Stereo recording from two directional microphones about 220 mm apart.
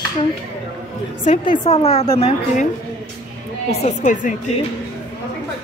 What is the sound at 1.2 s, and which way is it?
A woman's voice, 30° left (ahead or behind).